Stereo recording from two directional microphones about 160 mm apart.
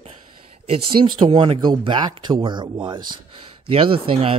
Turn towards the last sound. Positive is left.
turn(degrees=-35)  # may be behind; listen again after turning